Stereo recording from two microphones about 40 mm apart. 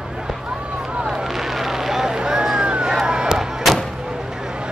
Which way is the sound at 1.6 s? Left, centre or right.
Centre.